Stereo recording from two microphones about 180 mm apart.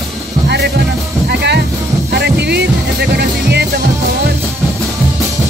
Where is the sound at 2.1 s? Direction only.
65° right (ahead or behind).